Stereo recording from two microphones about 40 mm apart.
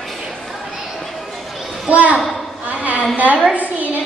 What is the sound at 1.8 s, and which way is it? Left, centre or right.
Speech, right.